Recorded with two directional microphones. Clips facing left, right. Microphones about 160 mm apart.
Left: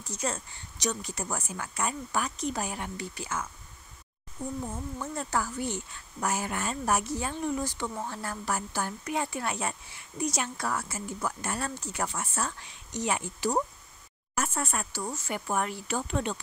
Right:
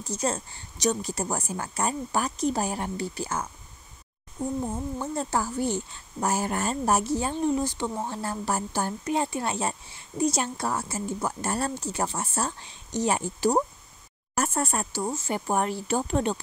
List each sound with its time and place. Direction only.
0.1 s speech: 35° right (ahead or behind)